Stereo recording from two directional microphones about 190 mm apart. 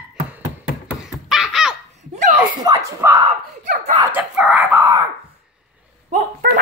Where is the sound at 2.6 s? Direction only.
20° right (ahead or behind).